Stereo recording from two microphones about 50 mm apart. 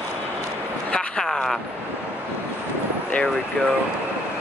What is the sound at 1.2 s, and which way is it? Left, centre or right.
Speech, centre.